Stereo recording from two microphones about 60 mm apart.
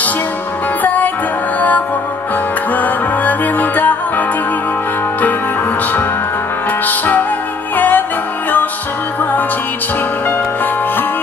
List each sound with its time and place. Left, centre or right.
0.8 s music: left
2.7 s music: left
6.9 s music: left